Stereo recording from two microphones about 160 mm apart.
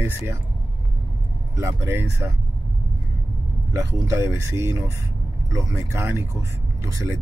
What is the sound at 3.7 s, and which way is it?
Speech, 20° right (ahead or behind).